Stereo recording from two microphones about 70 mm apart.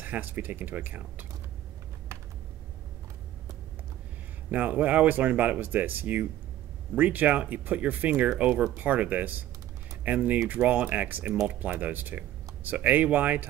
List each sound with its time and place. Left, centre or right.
0.0 s speech: right
4.5 s speech: right